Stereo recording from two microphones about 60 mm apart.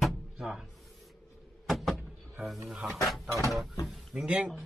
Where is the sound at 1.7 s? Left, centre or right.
Centre.